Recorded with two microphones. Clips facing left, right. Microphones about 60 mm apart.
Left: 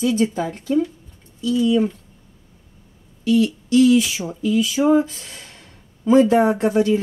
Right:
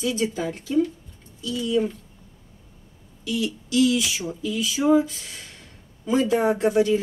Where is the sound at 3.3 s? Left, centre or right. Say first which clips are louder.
Left 9 dB; left.